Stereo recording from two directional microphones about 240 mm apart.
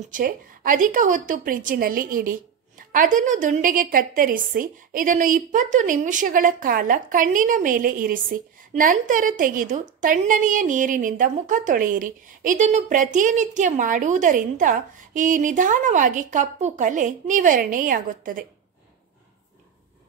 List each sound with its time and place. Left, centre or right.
0.1 s a woman's voice: right